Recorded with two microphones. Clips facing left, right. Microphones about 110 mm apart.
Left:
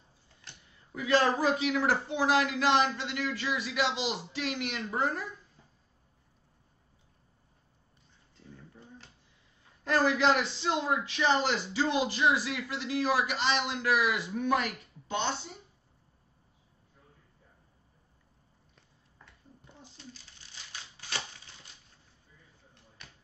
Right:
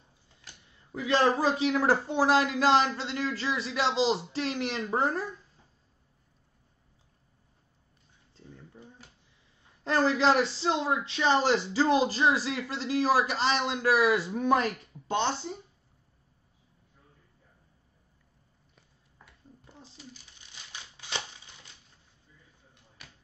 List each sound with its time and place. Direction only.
0.9 s speech: 25° right (ahead or behind)
8.7 s a sound: 10° right (ahead or behind)
9.8 s speech: 25° right (ahead or behind)
18.8 s a sound: 5° right (ahead or behind)
20.7 s crushing: 20° right (ahead or behind)
23.0 s basketball bounce: 5° right (ahead or behind)